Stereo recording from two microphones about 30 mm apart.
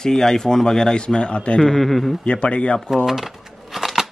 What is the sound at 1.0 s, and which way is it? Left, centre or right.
Speech, left.